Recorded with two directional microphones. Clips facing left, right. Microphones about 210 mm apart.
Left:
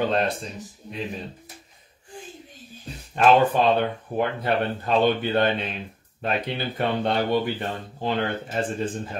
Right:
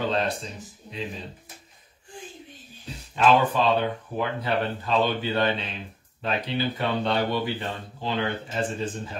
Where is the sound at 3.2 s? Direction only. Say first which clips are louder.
Left 3 dB; 55° left (ahead or behind).